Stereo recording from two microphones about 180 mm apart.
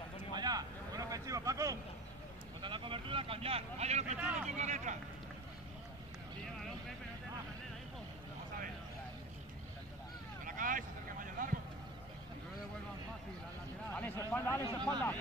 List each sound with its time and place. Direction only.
0.3 s vehicle: 20° right (ahead or behind)
2.6 s speech: 30° right (ahead or behind)
4.2 s speech: 10° right (ahead or behind)
4.6 s speech: 40° right (ahead or behind)
10.4 s vehicle: 50° right (ahead or behind)
13.9 s a man's voice: 10° left (ahead or behind)